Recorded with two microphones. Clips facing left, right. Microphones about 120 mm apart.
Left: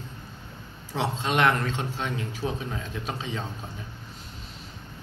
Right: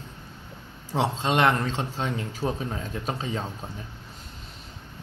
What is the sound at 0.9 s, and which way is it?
A man's voice, 30° right (ahead or behind).